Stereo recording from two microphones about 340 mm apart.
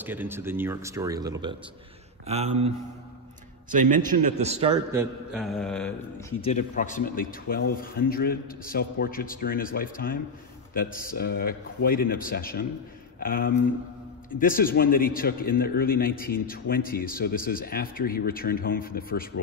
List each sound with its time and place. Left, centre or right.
0.0 s a man's voice: centre
3.9 s a man's voice: right
5.3 s speech: centre
6.4 s a man's voice: left